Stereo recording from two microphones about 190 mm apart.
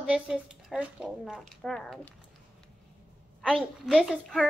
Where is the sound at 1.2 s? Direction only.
Centre (ahead or behind).